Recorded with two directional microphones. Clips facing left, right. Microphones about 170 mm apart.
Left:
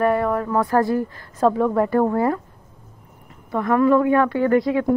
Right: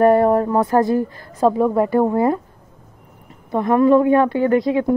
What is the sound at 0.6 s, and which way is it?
A woman's voice, 20° right (ahead or behind).